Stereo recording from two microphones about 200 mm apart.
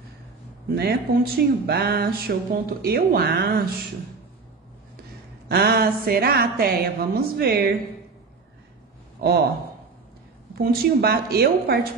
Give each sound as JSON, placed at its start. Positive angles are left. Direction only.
{"t": 0.7, "sound": "speech", "side_deg": -50}
{"t": 5.5, "sound": "speech", "side_deg": -50}
{"t": 9.2, "sound": "speech", "side_deg": -50}
{"t": 10.6, "sound": "speech", "side_deg": -50}